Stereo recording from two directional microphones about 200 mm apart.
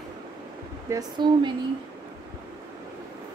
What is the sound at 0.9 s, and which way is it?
Speech, 20° right (ahead or behind).